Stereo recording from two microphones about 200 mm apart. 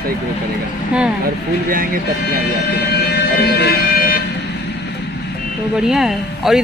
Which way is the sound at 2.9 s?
55° left (ahead or behind).